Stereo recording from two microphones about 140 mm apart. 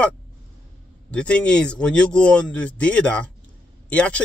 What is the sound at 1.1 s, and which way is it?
Speech, 10° left (ahead or behind).